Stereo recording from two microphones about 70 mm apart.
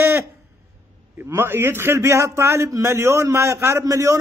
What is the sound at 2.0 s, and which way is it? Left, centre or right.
A man's voice, right.